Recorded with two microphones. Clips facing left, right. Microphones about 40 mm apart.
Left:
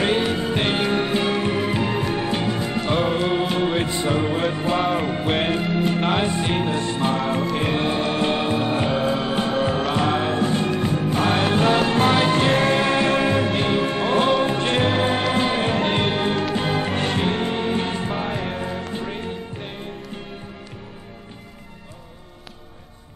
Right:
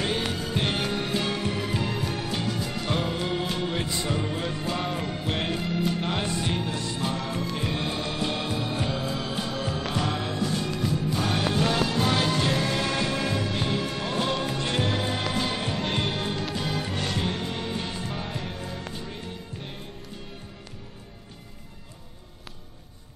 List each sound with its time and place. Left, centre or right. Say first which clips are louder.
0.2 s music: left 6 dB; left